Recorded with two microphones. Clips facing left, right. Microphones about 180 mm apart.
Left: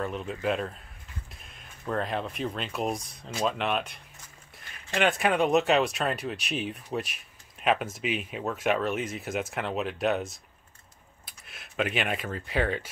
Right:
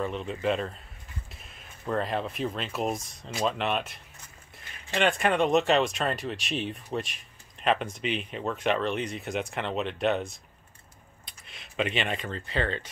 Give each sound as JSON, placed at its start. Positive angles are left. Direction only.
{"t": 0.0, "sound": "speech", "side_deg": 0}